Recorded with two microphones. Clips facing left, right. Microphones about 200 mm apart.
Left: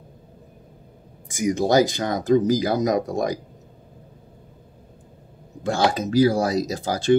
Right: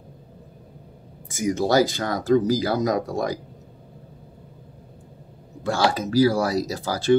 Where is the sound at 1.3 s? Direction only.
15° left (ahead or behind).